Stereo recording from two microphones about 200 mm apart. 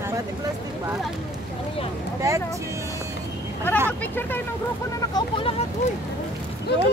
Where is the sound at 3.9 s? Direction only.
10° left (ahead or behind).